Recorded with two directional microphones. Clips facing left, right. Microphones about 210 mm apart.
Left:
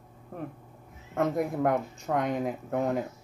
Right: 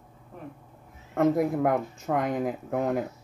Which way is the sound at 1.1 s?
Centre (ahead or behind).